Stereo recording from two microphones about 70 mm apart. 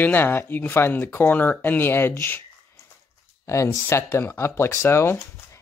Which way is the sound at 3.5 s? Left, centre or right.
Left.